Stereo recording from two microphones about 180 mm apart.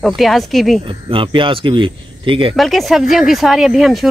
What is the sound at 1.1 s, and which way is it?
A man's voice, 30° right (ahead or behind).